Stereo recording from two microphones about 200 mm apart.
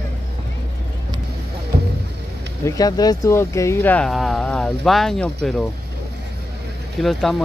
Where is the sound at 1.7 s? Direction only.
50° right (ahead or behind).